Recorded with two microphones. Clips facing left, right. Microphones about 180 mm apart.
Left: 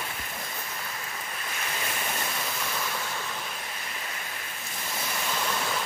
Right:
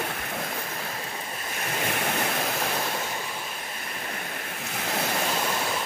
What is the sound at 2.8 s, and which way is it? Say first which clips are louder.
Waves: right 4 dB; 35° right (ahead or behind).